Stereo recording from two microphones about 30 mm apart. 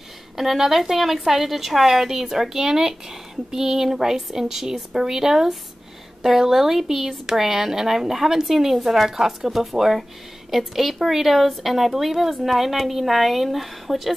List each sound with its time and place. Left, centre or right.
0.4 s speech: centre
9.1 s speech: centre